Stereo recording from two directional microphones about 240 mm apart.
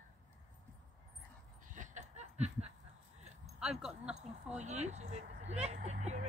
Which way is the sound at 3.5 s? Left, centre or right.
Centre.